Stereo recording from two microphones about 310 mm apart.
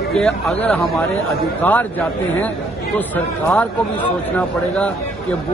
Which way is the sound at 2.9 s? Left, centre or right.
Centre.